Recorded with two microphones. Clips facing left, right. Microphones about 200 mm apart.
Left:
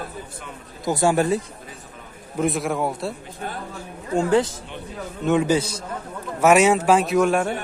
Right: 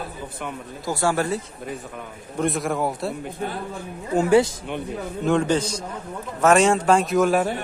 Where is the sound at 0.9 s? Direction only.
20° left (ahead or behind).